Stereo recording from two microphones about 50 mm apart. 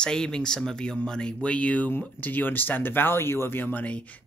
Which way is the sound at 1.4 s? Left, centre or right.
Left.